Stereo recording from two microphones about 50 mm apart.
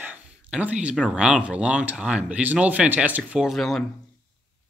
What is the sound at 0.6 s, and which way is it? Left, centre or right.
Speech, right.